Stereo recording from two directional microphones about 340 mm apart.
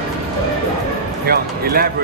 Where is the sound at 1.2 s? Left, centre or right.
Right.